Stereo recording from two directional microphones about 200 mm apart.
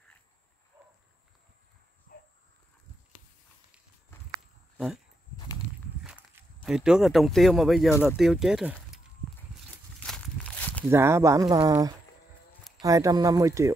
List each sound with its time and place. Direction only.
2.1 s dog: 45° left (ahead or behind)
4.1 s walk: 10° left (ahead or behind)
4.7 s speech: centre (ahead or behind)
6.0 s speech: 5° right (ahead or behind)
10.0 s walk: 5° left (ahead or behind)
10.9 s speech: 15° right (ahead or behind)